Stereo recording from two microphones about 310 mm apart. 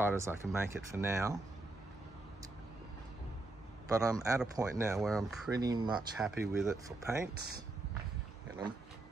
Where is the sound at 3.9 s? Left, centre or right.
Centre.